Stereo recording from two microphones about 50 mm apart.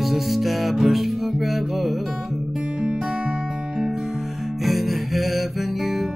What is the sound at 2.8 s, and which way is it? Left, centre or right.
Music, centre.